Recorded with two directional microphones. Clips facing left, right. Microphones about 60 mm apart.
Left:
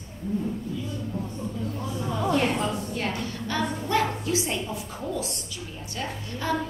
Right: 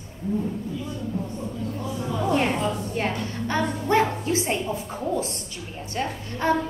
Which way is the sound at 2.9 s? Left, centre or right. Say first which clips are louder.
Right 3 dB; right.